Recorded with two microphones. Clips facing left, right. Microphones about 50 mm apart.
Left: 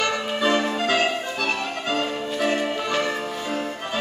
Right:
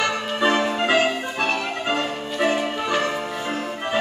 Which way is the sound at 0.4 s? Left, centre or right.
Centre.